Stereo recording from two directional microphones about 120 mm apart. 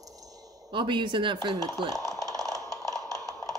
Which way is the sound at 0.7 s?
40° right (ahead or behind).